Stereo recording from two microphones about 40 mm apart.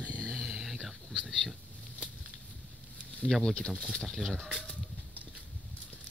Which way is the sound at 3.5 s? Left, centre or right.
Left.